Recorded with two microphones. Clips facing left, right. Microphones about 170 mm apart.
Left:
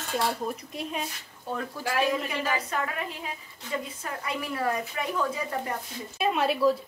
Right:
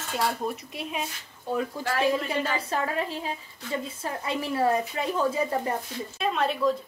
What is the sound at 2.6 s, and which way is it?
A woman's voice, 30° right (ahead or behind).